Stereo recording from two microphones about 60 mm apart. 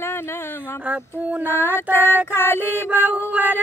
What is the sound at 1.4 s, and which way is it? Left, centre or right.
Female singing, left.